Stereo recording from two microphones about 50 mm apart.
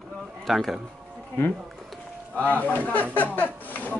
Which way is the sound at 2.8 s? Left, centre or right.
Left.